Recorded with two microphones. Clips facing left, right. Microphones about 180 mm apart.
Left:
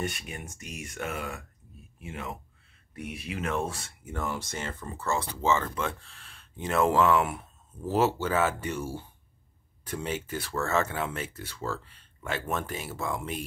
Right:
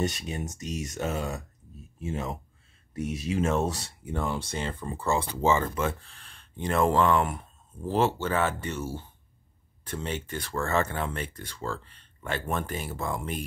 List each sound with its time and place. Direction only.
0.2 s speech: 25° right (ahead or behind)
2.9 s speech: 35° right (ahead or behind)
4.1 s speech: 25° right (ahead or behind)
4.6 s speech: 15° right (ahead or behind); by 13.5 s centre (ahead or behind)